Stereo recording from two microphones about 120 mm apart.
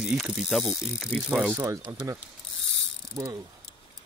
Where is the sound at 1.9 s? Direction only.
25° right (ahead or behind).